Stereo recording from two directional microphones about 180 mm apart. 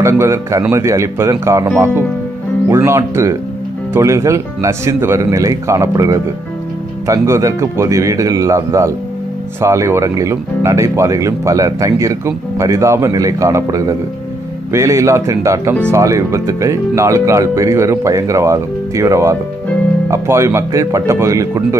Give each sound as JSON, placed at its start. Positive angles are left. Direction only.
{"t": 0.0, "sound": "speech", "side_deg": -15}
{"t": 2.7, "sound": "speech", "side_deg": -15}